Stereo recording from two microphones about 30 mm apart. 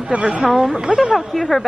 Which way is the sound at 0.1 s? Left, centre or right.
Right.